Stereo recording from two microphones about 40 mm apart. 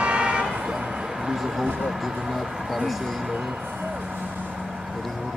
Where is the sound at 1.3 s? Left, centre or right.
Centre.